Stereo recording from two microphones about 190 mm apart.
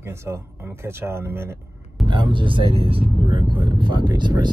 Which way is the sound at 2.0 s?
25° right (ahead or behind).